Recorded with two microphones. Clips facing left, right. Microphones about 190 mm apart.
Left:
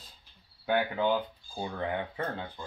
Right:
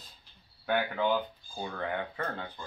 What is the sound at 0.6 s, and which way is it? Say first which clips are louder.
Speech: left 1 dB; 20° left (ahead or behind).